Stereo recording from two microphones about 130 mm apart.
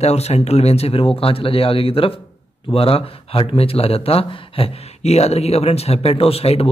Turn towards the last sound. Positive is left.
turn(degrees=50)  # may be behind; listen again after turning